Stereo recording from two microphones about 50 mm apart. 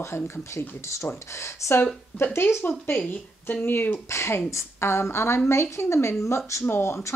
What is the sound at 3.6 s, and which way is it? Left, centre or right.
Speech, left.